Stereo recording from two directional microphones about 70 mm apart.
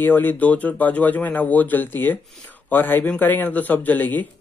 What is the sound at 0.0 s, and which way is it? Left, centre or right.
Speech, left.